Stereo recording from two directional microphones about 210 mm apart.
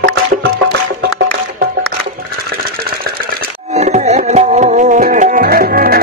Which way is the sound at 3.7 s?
30° right (ahead or behind).